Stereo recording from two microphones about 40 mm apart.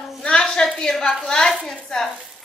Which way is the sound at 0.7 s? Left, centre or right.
Centre.